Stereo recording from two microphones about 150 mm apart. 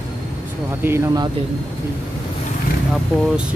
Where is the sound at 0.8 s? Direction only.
15° right (ahead or behind).